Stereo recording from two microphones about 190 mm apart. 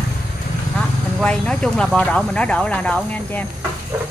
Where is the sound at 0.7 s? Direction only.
5° left (ahead or behind).